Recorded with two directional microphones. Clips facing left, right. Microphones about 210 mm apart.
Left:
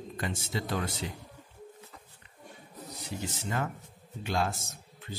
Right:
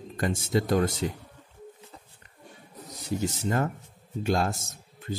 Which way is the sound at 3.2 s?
45° right (ahead or behind).